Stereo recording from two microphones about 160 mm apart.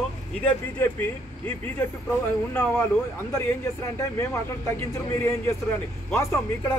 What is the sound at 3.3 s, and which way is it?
Speech, 15° left (ahead or behind).